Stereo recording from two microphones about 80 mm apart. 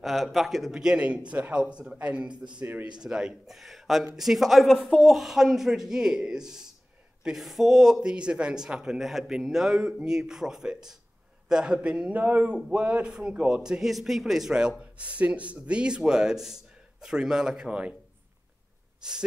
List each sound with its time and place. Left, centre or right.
0.0 s a man's voice: centre; by 2.9 s right
3.0 s a man's voice: centre
18.9 s speech: centre